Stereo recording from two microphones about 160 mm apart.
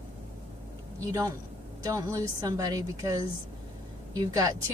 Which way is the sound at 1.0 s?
20° right (ahead or behind).